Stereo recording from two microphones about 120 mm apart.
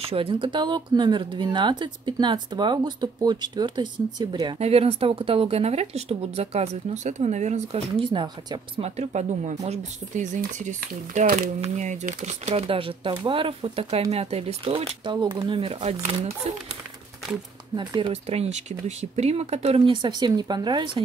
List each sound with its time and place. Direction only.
0.0 s speech: 50° right (ahead or behind)
4.6 s speech: 55° right (ahead or behind); by 7.8 s 75° right (ahead or behind)
8.0 s speech: 40° right (ahead or behind)
8.8 s speech: 65° right (ahead or behind)
17.7 s speech: 45° right (ahead or behind)